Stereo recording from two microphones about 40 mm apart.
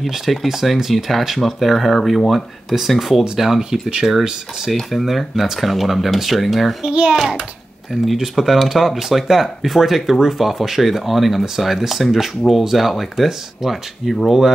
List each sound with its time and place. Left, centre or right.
0.0 s speech: centre
4.9 s speech: centre
6.8 s a child's voice: right
7.9 s speech: centre